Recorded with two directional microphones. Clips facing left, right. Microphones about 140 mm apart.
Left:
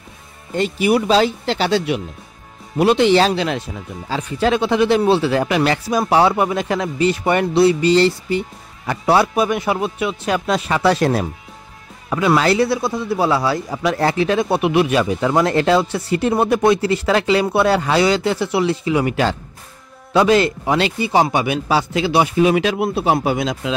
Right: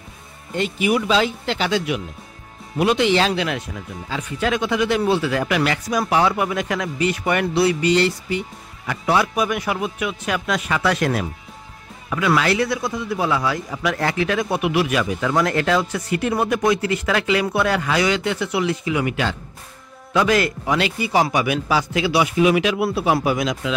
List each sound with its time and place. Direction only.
0.6 s speech: 35° left (ahead or behind)